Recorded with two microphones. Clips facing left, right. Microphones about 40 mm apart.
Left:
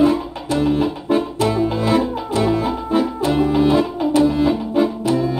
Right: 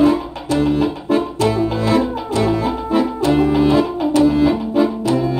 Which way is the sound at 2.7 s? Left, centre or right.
Centre.